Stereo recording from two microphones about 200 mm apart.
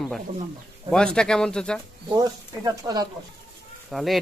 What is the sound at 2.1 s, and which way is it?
Speech, 20° right (ahead or behind).